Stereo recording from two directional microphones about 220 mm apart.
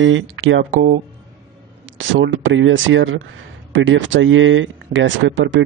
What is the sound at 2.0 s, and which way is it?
Speech, 60° right (ahead or behind).